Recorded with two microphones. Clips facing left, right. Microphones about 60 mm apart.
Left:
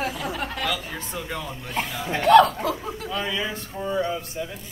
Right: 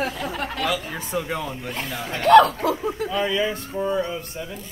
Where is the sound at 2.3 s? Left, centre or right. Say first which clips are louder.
Right 2 dB; centre.